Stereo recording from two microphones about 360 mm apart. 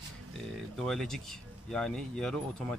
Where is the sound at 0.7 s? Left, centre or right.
Centre.